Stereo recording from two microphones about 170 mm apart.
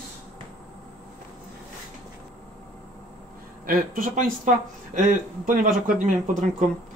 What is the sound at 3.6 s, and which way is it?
Speech, 55° right (ahead or behind).